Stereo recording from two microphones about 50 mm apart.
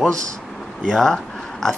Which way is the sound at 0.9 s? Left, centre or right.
Centre.